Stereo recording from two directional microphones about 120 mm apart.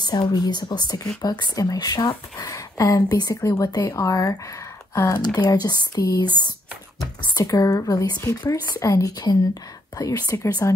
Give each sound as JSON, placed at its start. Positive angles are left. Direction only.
{"t": 0.0, "sound": "speech", "side_deg": 35}
{"t": 7.4, "sound": "speech", "side_deg": 30}